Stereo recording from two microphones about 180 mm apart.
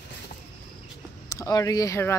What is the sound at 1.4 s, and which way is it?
Speech, 20° left (ahead or behind).